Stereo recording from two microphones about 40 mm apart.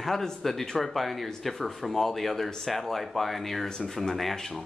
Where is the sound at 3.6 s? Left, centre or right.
Centre.